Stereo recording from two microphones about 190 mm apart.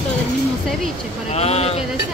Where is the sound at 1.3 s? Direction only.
35° left (ahead or behind).